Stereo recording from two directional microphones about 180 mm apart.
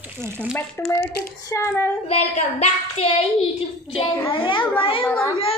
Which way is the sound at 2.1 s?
35° left (ahead or behind).